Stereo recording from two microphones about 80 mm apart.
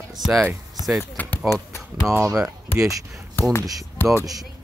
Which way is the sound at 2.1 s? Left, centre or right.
Right.